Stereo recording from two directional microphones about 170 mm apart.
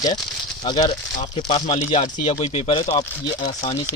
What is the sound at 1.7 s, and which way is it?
A man's voice, 45° left (ahead or behind).